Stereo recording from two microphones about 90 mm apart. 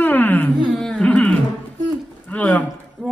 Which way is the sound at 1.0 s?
15° left (ahead or behind).